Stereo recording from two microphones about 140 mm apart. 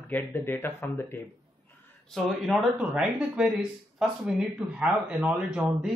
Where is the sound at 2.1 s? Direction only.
Centre (ahead or behind).